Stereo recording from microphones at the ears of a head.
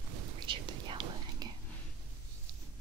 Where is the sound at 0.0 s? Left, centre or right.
Right.